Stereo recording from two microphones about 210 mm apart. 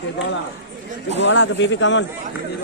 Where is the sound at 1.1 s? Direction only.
60° left (ahead or behind).